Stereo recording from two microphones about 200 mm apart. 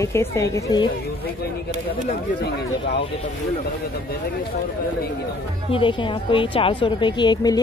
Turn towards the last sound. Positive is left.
turn(degrees=20)  # may be behind; listen again after turning